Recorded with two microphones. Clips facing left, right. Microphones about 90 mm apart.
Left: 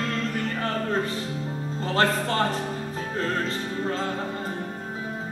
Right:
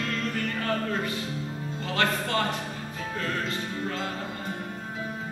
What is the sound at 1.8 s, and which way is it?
Music, 35° left (ahead or behind).